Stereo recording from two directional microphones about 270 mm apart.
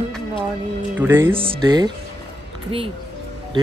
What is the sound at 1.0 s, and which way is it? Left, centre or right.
Speech, centre.